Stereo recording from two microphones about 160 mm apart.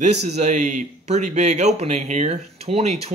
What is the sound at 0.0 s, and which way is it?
A man's voice, 45° right (ahead or behind).